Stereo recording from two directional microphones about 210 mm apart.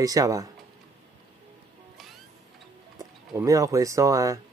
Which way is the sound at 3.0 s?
15° right (ahead or behind).